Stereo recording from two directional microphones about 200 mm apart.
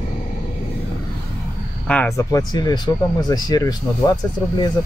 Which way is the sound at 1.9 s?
10° left (ahead or behind).